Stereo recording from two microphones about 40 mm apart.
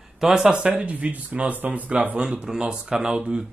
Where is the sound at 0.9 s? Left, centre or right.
Right.